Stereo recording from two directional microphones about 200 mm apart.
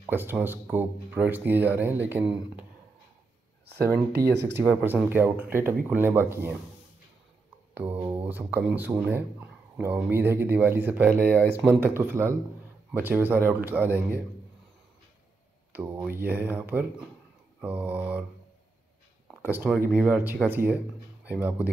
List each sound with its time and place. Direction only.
0.0 s speech: 10° right (ahead or behind)
4.3 s speech: 60° right (ahead or behind)
4.6 s speech: 10° right (ahead or behind)
7.7 s speech: 10° right (ahead or behind)
15.7 s speech: 10° right (ahead or behind)
19.4 s speech: 10° right (ahead or behind)